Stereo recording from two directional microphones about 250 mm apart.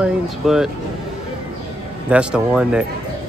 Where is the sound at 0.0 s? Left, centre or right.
Centre.